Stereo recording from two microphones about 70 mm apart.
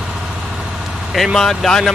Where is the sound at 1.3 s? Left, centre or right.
Centre.